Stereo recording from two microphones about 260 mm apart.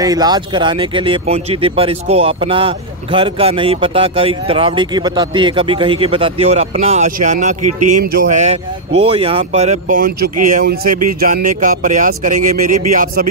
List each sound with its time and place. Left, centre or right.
0.0 s speech: centre; by 13.3 s right